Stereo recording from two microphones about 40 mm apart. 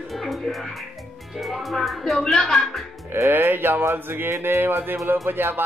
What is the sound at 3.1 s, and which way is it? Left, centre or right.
Speech, right.